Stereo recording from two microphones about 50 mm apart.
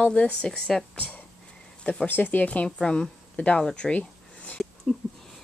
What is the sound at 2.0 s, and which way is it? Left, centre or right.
Speech, left.